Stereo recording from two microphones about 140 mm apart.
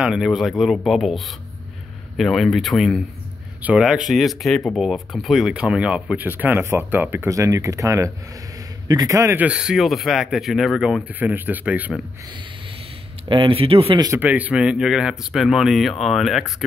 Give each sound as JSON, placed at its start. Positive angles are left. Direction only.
{"t": 0.0, "sound": "a man's voice", "side_deg": -5}
{"t": 9.4, "sound": "speech", "side_deg": -5}
{"t": 13.3, "sound": "speech", "side_deg": -40}
{"t": 14.2, "sound": "speech", "side_deg": -10}